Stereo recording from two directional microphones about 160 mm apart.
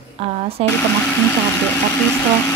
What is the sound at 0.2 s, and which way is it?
Speech, 40° right (ahead or behind).